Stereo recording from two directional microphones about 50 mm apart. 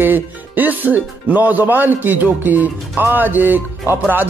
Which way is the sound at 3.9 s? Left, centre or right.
Right.